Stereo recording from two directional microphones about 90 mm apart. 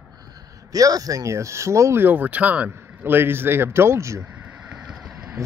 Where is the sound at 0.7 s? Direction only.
40° right (ahead or behind).